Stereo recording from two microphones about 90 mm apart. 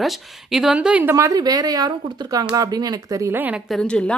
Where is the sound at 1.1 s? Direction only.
40° right (ahead or behind).